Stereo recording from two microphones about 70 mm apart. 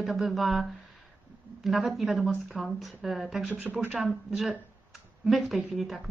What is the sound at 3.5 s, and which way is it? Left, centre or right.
Speech, right.